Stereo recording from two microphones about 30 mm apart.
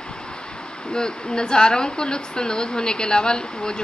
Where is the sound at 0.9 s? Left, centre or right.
Left.